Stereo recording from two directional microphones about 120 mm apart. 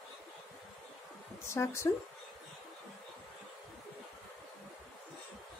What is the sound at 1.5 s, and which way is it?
Speech, 20° left (ahead or behind).